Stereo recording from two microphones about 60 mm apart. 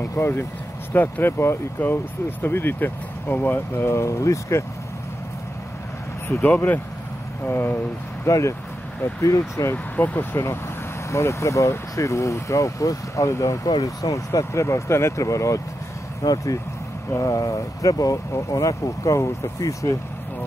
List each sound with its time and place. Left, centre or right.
0.2 s speech: left
0.9 s speech: left
1.8 s speech: left
6.4 s speech: left
8.3 s speech: left
9.9 s speech: left
10.3 s speech: left
13.7 s speech: left
16.2 s speech: left
18.5 s speech: left